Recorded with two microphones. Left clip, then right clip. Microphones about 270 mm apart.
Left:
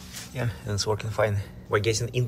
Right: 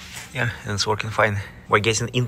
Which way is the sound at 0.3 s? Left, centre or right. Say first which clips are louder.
Right 8 dB; centre.